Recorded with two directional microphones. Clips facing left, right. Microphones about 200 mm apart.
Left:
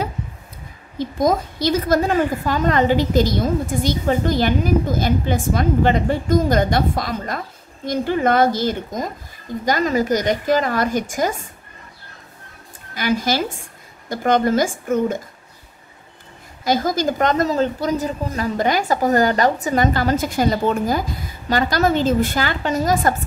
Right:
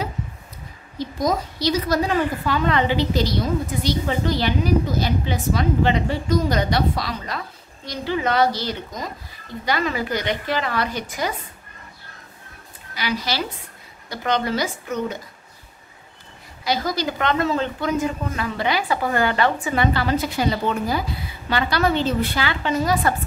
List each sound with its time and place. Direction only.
0.9 s a woman's voice: 50° left (ahead or behind)
12.9 s a woman's voice: 50° left (ahead or behind)
16.6 s a woman's voice: 45° left (ahead or behind)